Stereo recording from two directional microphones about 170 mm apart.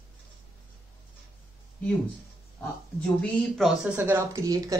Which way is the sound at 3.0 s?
5° left (ahead or behind).